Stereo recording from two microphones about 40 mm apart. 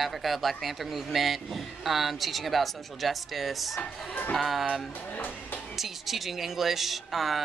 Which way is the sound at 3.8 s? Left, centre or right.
Left.